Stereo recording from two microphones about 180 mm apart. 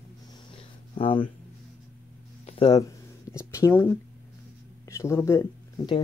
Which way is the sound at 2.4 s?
30° left (ahead or behind).